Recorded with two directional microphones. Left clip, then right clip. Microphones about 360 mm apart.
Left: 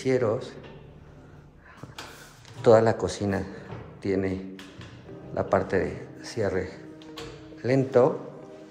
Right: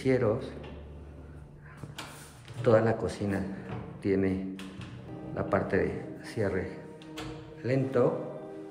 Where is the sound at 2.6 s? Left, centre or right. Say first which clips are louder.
Left 6 dB; centre.